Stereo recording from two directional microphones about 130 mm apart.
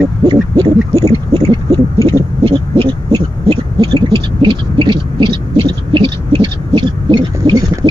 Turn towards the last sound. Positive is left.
turn(degrees=-35)  # may be behind; listen again after turning